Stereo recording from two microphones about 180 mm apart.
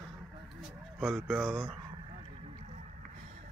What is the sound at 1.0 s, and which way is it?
Speech, 5° left (ahead or behind).